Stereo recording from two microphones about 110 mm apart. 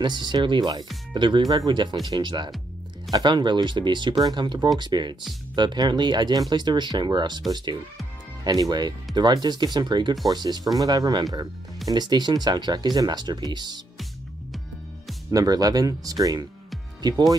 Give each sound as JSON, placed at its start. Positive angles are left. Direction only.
{"t": 0.0, "sound": "speech", "side_deg": -45}
{"t": 8.5, "sound": "speech", "side_deg": -35}
{"t": 15.3, "sound": "speech", "side_deg": -35}